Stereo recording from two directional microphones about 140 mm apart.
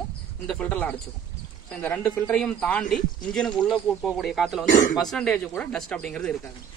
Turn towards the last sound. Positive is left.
turn(degrees=5)  # may be behind; listen again after turning